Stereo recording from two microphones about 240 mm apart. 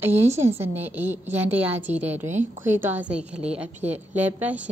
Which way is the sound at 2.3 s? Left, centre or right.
Right.